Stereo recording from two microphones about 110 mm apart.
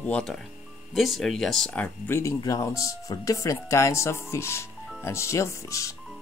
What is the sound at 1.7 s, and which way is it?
Speech, 20° left (ahead or behind).